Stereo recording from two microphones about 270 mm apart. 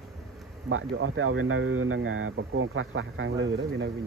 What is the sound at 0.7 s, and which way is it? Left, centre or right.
Speech, right.